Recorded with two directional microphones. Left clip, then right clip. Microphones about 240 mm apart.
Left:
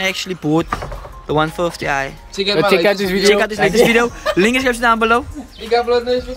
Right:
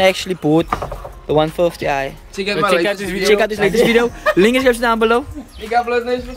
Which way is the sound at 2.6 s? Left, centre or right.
Left.